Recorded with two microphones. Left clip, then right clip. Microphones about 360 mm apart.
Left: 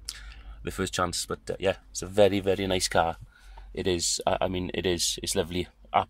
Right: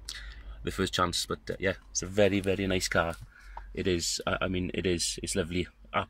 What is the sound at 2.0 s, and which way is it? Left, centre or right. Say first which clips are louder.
Speech: left 4 dB; left.